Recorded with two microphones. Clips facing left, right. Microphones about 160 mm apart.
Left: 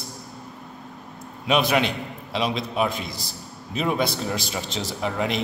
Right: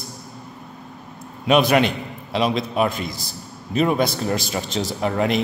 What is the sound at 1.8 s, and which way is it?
A man's voice, centre (ahead or behind).